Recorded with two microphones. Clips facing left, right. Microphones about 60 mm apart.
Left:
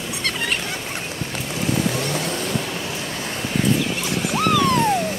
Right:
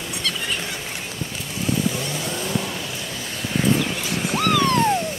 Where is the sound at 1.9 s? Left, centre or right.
Left.